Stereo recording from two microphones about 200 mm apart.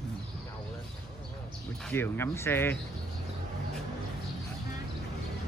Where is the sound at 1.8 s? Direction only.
10° left (ahead or behind).